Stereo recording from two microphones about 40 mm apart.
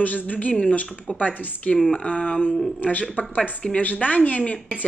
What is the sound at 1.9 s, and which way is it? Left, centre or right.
Speech, left.